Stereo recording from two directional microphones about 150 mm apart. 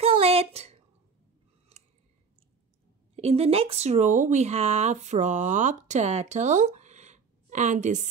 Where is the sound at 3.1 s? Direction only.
45° right (ahead or behind).